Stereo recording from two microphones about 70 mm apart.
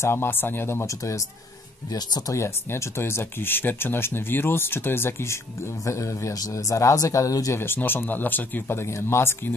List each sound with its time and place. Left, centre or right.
0.0 s speech: left
1.9 s speech: left
2.3 s speech: left
7.5 s speech: left